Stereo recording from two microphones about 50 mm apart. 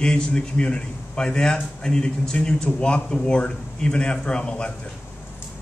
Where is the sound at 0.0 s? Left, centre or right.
Centre.